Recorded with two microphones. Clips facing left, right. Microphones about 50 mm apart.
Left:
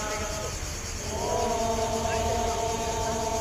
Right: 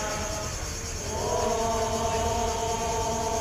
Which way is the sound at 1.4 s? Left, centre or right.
Right.